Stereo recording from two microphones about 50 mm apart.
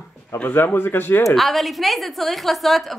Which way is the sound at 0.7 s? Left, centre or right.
Left.